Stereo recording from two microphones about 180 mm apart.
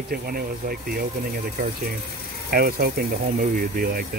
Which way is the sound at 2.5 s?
55° right (ahead or behind).